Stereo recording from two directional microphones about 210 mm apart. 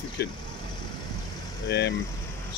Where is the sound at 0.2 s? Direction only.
50° left (ahead or behind).